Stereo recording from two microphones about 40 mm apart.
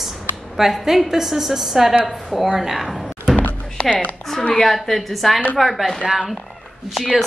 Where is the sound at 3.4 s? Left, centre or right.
Left.